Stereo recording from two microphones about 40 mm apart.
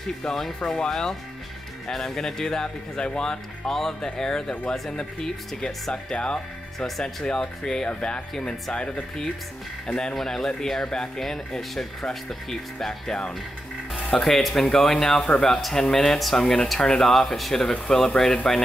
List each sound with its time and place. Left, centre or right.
0.2 s speech: centre
6.1 s speech: left
10.1 s speech: centre